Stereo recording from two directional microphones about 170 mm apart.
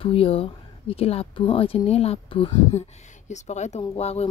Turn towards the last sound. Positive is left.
turn(degrees=35)  # may be behind; listen again after turning